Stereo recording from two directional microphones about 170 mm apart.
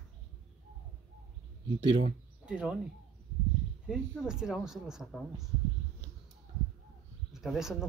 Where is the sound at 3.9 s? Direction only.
5° right (ahead or behind).